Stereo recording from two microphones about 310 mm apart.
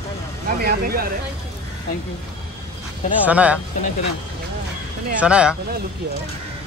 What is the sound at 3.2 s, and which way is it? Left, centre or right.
Speech, centre.